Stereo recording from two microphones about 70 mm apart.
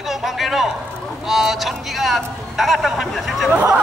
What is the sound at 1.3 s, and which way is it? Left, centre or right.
Speech, centre.